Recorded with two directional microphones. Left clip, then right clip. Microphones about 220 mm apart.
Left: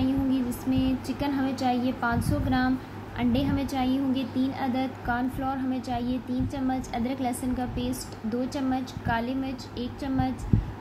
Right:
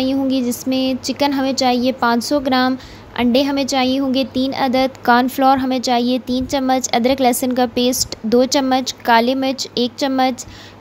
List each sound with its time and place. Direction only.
0.0 s a woman's voice: 50° right (ahead or behind)